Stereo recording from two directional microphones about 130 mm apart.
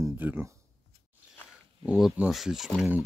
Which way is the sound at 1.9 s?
5° right (ahead or behind).